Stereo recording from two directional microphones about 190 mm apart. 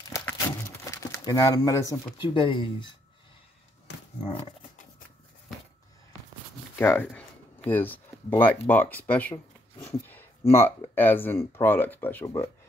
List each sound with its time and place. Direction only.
0.1 s crumpling: 10° left (ahead or behind); by 2.7 s 25° left (ahead or behind)
6.8 s speech: 10° left (ahead or behind)
7.1 s a sound: 10° left (ahead or behind)
8.6 s speech: 10° left (ahead or behind)